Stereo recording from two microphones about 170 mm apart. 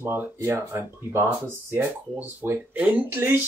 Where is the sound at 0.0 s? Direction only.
15° right (ahead or behind).